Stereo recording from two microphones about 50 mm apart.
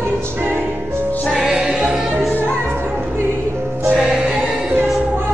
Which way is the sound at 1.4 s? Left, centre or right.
Centre.